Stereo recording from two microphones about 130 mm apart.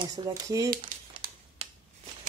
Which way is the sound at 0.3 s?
25° right (ahead or behind).